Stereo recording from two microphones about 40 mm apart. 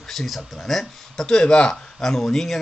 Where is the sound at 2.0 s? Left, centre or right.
Centre.